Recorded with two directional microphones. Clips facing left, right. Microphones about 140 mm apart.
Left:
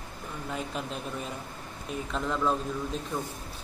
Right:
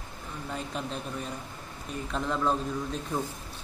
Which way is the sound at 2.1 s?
Centre (ahead or behind).